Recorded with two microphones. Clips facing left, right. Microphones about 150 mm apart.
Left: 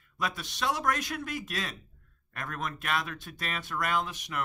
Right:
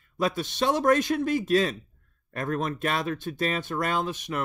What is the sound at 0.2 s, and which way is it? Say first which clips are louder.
Speech: right 7 dB; 25° right (ahead or behind).